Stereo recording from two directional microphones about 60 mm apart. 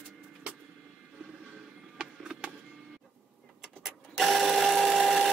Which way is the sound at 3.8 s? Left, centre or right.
Centre.